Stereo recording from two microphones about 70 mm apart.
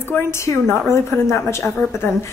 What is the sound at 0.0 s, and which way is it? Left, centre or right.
A woman's voice, left.